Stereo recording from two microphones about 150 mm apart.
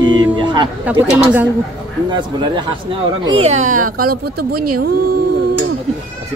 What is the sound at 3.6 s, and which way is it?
Speech, 60° right (ahead or behind).